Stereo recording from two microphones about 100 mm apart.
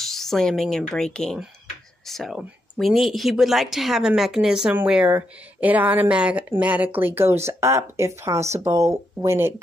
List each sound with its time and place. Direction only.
0.0 s speech: 5° left (ahead or behind); by 9.5 s 30° right (ahead or behind)